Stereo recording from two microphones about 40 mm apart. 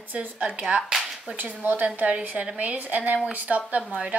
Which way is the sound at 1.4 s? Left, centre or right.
Right.